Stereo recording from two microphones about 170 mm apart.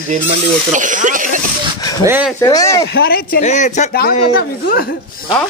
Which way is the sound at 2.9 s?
60° left (ahead or behind).